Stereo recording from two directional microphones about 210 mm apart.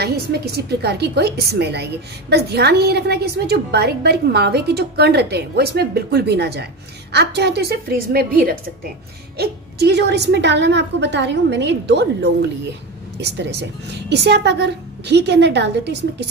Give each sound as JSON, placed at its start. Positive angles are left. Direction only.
{"t": 0.0, "sound": "a woman's voice", "side_deg": -50}